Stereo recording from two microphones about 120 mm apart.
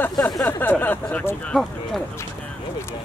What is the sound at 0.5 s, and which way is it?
Speech, 15° left (ahead or behind).